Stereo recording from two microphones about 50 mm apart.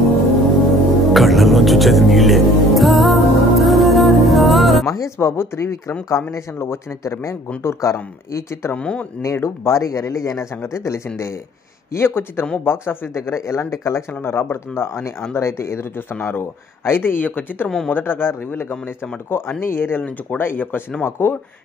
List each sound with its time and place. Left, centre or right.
0.7 s music: centre
4.8 s speech: left
6.7 s speech: left
8.7 s speech: left
9.2 s speech: left
10.6 s speech: left
11.9 s speech: left
12.6 s speech: left
17.2 s a woman's voice: left